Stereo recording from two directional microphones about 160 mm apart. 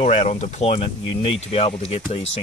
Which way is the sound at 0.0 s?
45° left (ahead or behind).